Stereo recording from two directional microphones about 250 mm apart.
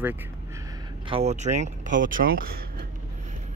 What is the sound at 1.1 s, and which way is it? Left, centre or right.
Speech, right.